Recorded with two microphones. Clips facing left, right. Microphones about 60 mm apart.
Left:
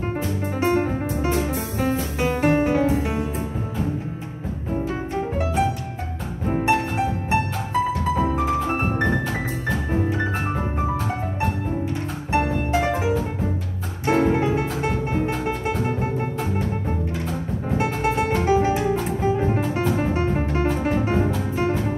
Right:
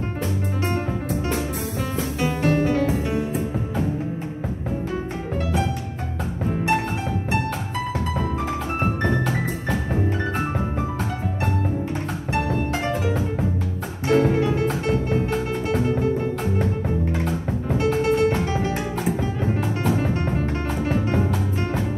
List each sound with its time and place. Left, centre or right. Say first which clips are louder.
0.6 s music: left 7 dB; left
2.1 s music: left 1 dB; left
5.4 s music: left 1 dB; left
8.2 s music: left 4 dB; left
12.3 s music: left 3 dB; left
14.0 s music: even; left
17.7 s music: right 2 dB; left